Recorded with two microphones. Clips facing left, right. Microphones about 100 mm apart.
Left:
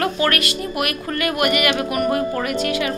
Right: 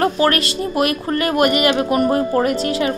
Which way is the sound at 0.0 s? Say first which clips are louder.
Right 4 dB; 30° right (ahead or behind).